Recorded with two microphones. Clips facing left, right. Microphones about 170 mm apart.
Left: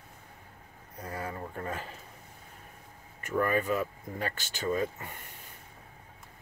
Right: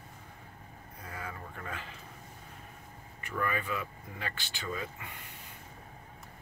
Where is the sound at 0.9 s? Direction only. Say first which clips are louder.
Left 6 dB; 40° left (ahead or behind).